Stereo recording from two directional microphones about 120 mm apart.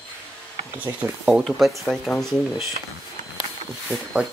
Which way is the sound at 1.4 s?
Centre (ahead or behind).